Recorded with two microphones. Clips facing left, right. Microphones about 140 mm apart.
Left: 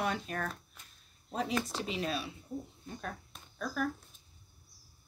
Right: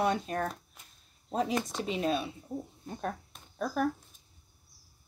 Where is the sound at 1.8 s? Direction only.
30° right (ahead or behind).